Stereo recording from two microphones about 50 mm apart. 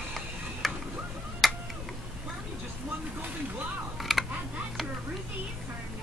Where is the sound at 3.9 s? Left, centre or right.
Centre.